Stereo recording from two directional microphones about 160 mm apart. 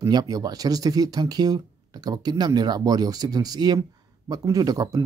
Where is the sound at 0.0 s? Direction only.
25° right (ahead or behind).